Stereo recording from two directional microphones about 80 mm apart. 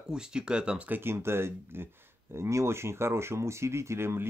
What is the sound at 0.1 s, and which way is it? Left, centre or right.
Speech, centre.